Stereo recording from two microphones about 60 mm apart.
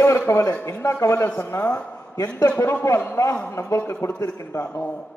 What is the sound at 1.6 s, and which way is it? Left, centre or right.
Speech, left.